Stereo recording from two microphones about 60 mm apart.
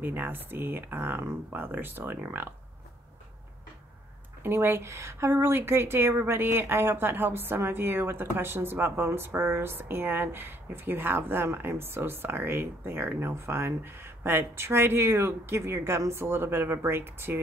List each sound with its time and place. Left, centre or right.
0.0 s a woman's voice: right
4.4 s a woman's voice: right